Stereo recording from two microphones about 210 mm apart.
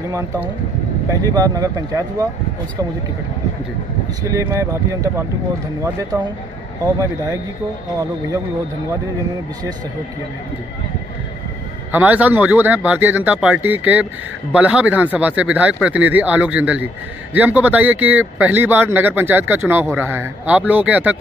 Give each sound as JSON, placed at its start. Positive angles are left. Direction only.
{"t": 1.1, "sound": "speech", "side_deg": -15}
{"t": 4.2, "sound": "speech", "side_deg": -15}
{"t": 11.9, "sound": "speech", "side_deg": -5}